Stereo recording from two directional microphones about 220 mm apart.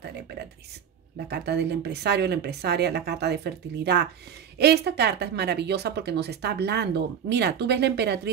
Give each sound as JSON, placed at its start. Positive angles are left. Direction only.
{"t": 1.3, "sound": "speech", "side_deg": -50}